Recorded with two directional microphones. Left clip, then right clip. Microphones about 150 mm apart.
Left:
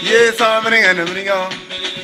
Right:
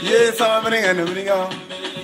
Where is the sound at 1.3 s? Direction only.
25° left (ahead or behind).